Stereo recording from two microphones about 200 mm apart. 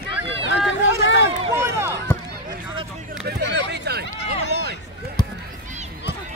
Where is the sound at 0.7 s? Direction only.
65° left (ahead or behind).